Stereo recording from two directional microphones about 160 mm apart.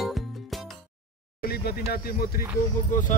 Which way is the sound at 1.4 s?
75° left (ahead or behind).